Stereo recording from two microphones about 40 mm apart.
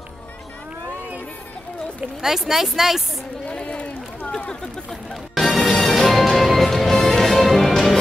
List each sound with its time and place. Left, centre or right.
2.2 s speech: centre
3.4 s run: left
5.3 s music: centre